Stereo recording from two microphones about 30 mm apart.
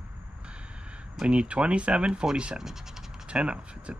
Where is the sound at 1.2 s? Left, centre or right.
Right.